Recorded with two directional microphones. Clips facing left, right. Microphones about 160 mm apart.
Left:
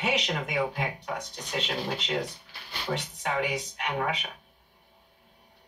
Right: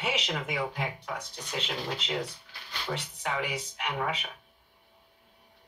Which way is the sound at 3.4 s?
Centre (ahead or behind).